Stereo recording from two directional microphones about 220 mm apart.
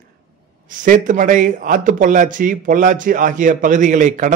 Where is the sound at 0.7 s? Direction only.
35° right (ahead or behind).